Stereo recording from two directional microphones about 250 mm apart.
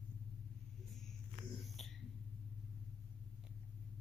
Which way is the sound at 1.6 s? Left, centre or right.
Centre.